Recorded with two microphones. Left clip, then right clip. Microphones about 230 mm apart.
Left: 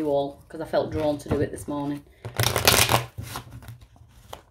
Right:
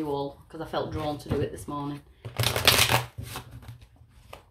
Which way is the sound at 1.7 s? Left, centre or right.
Left.